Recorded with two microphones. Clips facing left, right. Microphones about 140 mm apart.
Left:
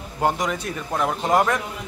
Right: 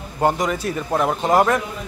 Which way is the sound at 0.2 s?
Centre (ahead or behind).